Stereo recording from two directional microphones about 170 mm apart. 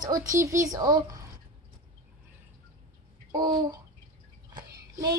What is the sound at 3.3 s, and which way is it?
Speech, 25° right (ahead or behind).